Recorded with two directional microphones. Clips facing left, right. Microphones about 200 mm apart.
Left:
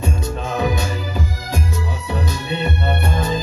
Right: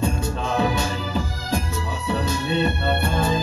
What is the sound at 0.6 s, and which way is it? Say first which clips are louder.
Music: left 1 dB; 15° left (ahead or behind).